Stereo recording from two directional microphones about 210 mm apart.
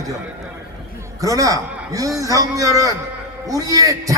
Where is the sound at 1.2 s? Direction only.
15° right (ahead or behind).